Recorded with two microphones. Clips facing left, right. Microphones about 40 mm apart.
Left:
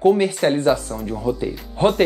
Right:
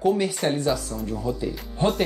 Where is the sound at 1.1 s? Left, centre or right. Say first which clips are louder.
Left 6 dB; centre.